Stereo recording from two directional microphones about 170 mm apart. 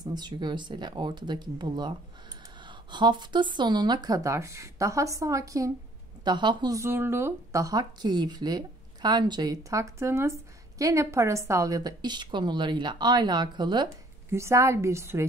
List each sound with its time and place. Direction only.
0.0 s a woman's voice: 25° right (ahead or behind)